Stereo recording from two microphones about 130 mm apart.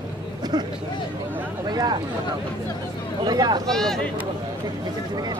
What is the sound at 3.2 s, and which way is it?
Speech, 30° right (ahead or behind).